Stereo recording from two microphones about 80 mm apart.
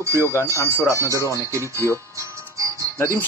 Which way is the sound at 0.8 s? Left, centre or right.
Right.